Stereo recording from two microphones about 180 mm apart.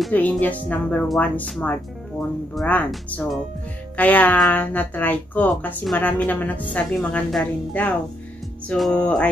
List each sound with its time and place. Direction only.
0.0 s speech: 10° left (ahead or behind)